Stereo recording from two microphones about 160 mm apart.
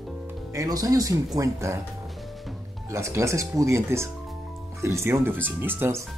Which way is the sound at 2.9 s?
20° right (ahead or behind).